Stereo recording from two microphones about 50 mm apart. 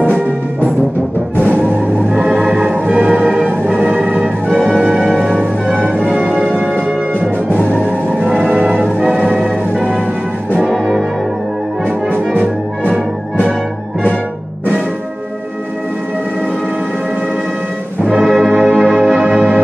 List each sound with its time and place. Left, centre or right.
2.3 s music: centre
2.7 s music: right
3.1 s music: centre
4.5 s music: centre
7.8 s music: centre
9.4 s music: centre
18.2 s brass instrument: centre
19.0 s music: centre